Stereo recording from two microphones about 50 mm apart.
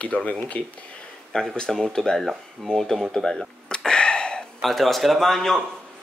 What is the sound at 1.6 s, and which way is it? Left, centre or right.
Speech, centre.